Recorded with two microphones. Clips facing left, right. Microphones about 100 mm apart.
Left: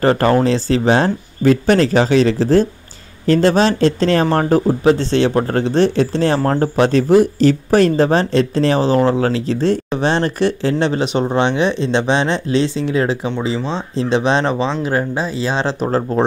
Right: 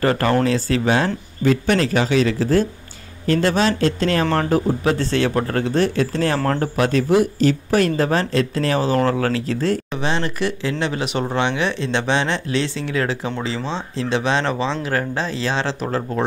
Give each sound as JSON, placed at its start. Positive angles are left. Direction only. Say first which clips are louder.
{"t": 0.0, "sound": "speech", "louder": "left 4 dB", "side_deg": 30}
{"t": 13.6, "sound": "speech", "louder": "left 4 dB", "side_deg": 10}
{"t": 13.9, "sound": "speech", "louder": "left 5 dB", "side_deg": 25}
{"t": 16.1, "sound": "speech", "louder": "left 6 dB", "side_deg": 30}